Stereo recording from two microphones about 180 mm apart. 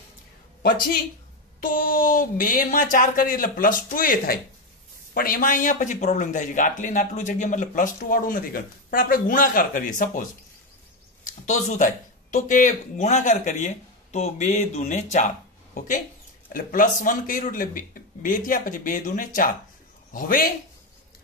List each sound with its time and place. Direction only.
1.6 s speech: 50° left (ahead or behind)
11.2 s speech: 45° left (ahead or behind)